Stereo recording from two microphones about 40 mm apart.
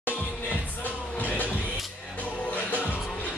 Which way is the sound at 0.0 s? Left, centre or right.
Left.